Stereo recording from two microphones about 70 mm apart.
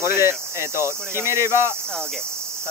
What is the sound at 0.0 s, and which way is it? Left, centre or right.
Speech, right.